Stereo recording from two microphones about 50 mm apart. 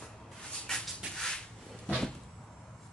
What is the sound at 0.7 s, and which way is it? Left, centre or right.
Dog, centre.